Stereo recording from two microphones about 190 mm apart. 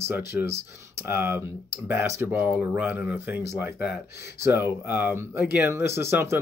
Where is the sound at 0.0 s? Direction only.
15° right (ahead or behind).